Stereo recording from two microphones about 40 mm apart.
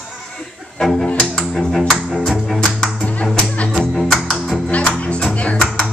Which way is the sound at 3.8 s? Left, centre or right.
Centre.